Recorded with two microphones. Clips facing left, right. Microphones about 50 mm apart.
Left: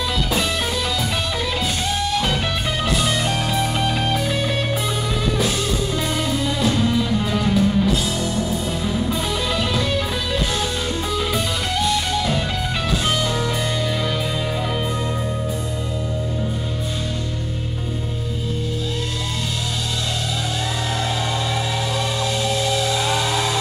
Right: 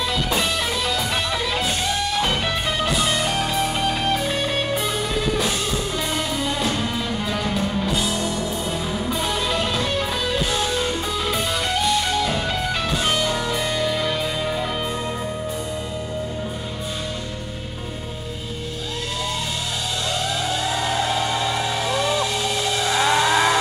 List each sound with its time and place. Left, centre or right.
2.1 s music: centre
6.3 s music: centre
7.5 s music: centre
8.1 s music: right
8.8 s music: centre
13.0 s music: centre
20.9 s music: centre
21.9 s a sound: centre
22.8 s a sound: right